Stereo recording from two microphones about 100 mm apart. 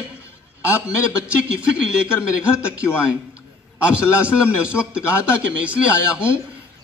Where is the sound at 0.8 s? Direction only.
10° right (ahead or behind).